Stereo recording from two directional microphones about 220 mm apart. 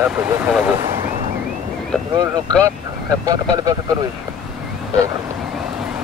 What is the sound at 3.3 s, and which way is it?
Speech, 15° right (ahead or behind).